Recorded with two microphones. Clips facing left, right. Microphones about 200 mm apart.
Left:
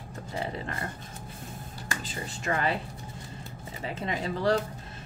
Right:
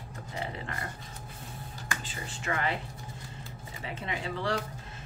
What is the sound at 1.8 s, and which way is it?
Speech, 35° left (ahead or behind).